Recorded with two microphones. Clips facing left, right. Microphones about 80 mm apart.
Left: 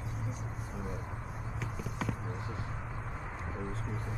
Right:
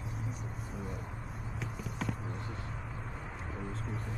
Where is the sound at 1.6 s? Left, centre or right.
Centre.